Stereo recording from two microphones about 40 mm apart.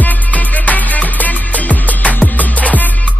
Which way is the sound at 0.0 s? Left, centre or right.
Left.